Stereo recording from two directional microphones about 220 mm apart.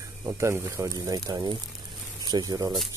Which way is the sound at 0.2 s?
10° right (ahead or behind).